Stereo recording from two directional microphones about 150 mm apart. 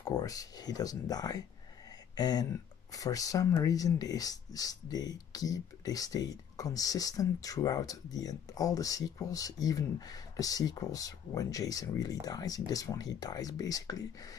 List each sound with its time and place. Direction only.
0.0 s speech: 25° left (ahead or behind)